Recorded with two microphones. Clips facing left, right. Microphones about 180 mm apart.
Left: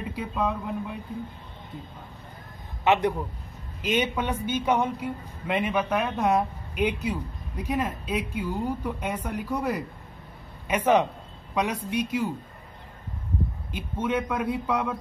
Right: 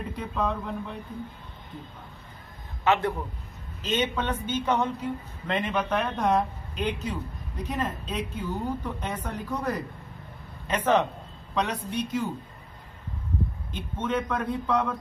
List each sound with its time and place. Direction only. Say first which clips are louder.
0.4 s speech: left 1 dB; 10° left (ahead or behind)
2.8 s speech: left 2 dB; 15° left (ahead or behind)
13.7 s speech: left 3 dB; 10° left (ahead or behind)